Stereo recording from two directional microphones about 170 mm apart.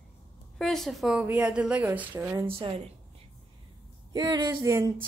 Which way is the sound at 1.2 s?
5° right (ahead or behind).